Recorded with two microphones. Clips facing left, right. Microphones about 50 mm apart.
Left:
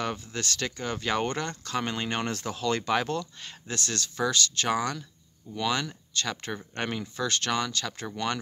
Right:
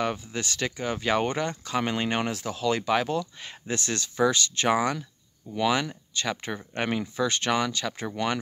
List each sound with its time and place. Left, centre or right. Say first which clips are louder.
0.0 s speech: right 3 dB; centre
3.6 s speech: right 3 dB; centre